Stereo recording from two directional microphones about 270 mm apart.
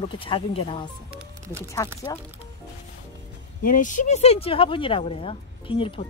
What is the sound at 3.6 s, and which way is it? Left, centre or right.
Speech, left.